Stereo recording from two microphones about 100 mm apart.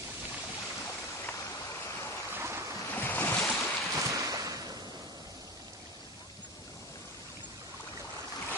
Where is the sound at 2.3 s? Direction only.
25° right (ahead or behind).